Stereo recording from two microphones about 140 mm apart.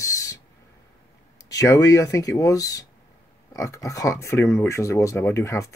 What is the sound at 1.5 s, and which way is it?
Speech, 25° left (ahead or behind).